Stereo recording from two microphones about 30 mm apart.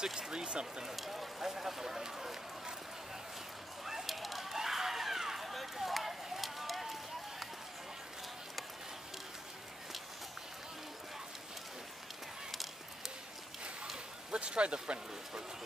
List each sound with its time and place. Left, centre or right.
0.0 s speech: centre
0.4 s speech: right
0.8 s speech: centre
3.8 s a sound: centre
4.5 s run: centre
14.3 s speech: right